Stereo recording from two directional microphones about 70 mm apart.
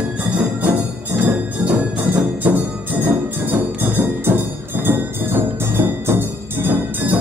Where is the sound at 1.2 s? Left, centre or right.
Right.